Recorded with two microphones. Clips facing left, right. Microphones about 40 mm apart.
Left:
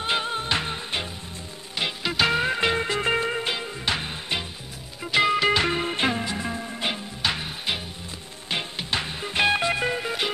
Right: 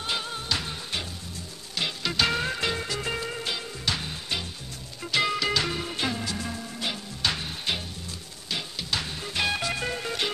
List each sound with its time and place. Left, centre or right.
0.0 s music: left
1.8 s music: centre
7.2 s music: centre
8.5 s music: left; by 10.3 s centre